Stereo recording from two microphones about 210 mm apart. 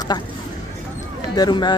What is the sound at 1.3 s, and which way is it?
Speech, 20° left (ahead or behind).